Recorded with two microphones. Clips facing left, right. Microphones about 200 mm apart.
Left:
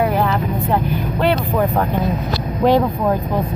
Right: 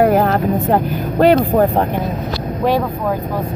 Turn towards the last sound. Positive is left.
turn(degrees=-40)  # may be behind; listen again after turning